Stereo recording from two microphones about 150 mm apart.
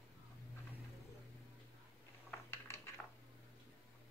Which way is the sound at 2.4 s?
15° left (ahead or behind).